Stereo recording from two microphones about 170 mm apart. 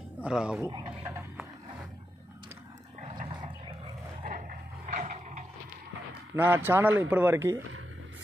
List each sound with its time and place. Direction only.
0.2 s speech: 5° right (ahead or behind)
0.7 s speech: 25° right (ahead or behind)
1.0 s speech: 15° right (ahead or behind)
3.0 s a sound: 35° right (ahead or behind)
4.2 s a sound: 55° right (ahead or behind)
6.3 s speech: 10° right (ahead or behind)